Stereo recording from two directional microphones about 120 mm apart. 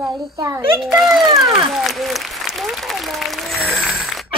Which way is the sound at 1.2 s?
35° right (ahead or behind).